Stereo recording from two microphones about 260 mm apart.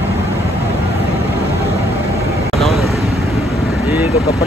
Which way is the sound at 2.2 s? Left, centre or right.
Right.